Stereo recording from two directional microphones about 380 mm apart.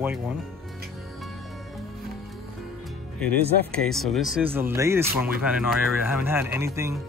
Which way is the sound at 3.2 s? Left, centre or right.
Centre.